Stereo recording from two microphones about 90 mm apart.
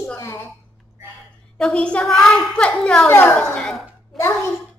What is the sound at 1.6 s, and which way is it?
A woman's voice, 10° left (ahead or behind).